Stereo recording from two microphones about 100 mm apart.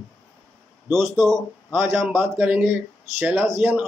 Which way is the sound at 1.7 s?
20° right (ahead or behind).